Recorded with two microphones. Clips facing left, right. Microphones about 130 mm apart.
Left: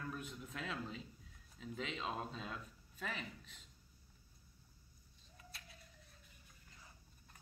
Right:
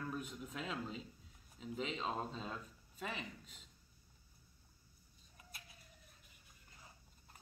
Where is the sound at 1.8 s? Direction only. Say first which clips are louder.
Right 2 dB; 30° right (ahead or behind).